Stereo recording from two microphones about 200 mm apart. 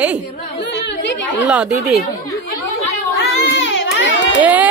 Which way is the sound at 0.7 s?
65° left (ahead or behind).